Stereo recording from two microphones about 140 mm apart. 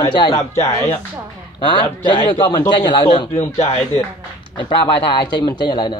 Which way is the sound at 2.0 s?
35° left (ahead or behind).